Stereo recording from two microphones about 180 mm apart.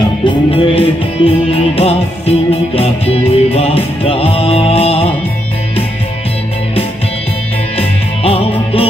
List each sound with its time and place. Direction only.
0.2 s music: 30° left (ahead or behind)
7.7 s music: 35° left (ahead or behind)